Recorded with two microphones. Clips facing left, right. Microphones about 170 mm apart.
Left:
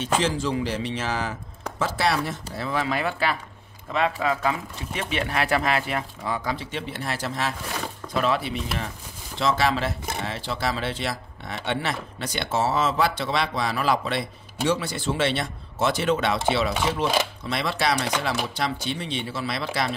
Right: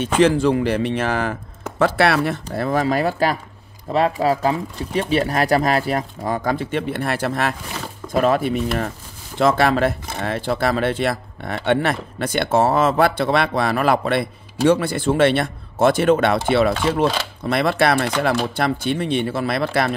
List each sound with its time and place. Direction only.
0.0 s speech: 60° right (ahead or behind)
2.5 s speech: 50° right (ahead or behind)